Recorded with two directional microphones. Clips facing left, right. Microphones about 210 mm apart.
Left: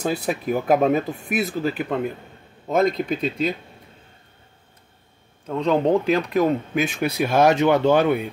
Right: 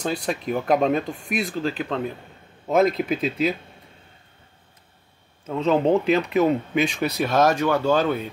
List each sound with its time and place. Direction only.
0.0 s speech: 5° left (ahead or behind)
2.7 s speech: centre (ahead or behind)
5.5 s speech: centre (ahead or behind)
7.5 s speech: 20° left (ahead or behind)